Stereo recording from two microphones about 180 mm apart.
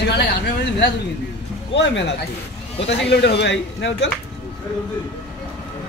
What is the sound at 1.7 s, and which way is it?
Speech, 80° left.